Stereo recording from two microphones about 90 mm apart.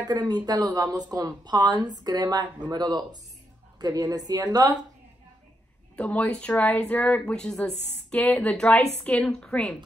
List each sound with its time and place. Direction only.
0.0 s speech: 50° right (ahead or behind)
5.9 s speech: 15° left (ahead or behind)